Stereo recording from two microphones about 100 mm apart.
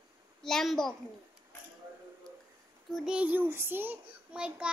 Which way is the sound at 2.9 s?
5° right (ahead or behind).